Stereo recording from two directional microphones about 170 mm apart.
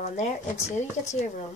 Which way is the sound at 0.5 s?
15° left (ahead or behind).